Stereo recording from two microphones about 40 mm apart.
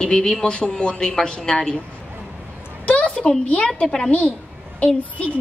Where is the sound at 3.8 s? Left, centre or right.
Centre.